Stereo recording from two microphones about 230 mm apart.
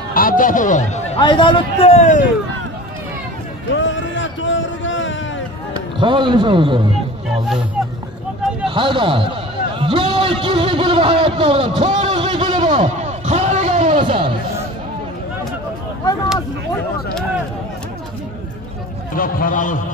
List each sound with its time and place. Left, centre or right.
0.1 s a man's voice: left
3.7 s a sound: left
5.9 s a man's voice: right
8.6 s a man's voice: right
12.8 s music: right
19.1 s a man's voice: left